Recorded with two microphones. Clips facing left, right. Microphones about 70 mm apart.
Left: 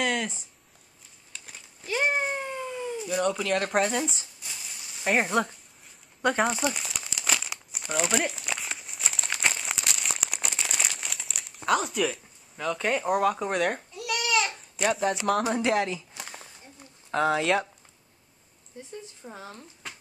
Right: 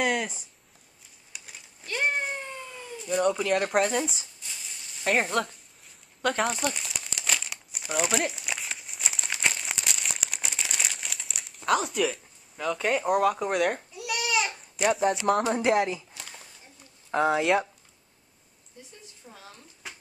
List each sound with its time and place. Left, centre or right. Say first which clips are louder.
0.0 s a sound: right 1 dB; centre
1.4 s cat: left 2 dB; centre
3.2 s speech: right 2 dB; centre
6.2 s crumpling: left 2 dB; centre
13.9 s goat: left 1 dB; centre
15.5 s speech: right 1 dB; right
17.1 s speech: right 1 dB; centre
18.8 s speech: left 8 dB; left
19.8 s a sound: even; centre